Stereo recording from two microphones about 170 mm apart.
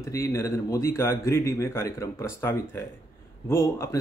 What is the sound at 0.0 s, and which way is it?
Speech, 15° left (ahead or behind).